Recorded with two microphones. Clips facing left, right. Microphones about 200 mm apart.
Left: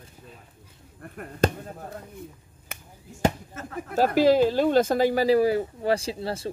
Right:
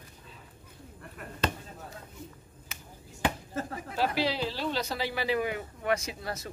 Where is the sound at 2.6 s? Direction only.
55° left (ahead or behind).